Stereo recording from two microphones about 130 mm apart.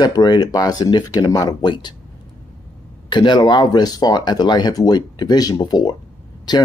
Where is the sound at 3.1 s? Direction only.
35° left (ahead or behind).